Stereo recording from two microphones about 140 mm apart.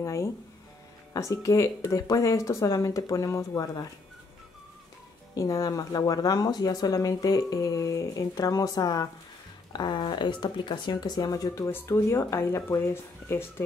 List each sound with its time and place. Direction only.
0.0 s speech: 20° left (ahead or behind)
5.3 s speech: 25° left (ahead or behind)